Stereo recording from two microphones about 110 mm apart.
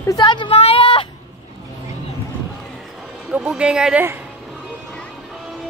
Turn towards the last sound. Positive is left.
turn(degrees=-10)  # may be behind; listen again after turning